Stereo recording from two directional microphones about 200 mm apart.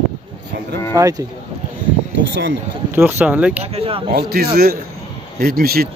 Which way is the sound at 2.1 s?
65° right (ahead or behind).